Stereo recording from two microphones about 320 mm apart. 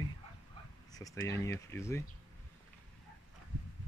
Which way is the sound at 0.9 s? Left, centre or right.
Centre.